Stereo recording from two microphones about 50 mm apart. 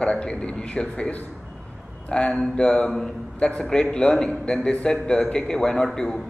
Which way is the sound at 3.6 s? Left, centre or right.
Centre.